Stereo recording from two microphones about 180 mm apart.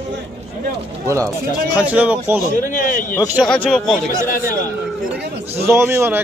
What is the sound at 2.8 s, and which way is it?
Speech, 45° left (ahead or behind).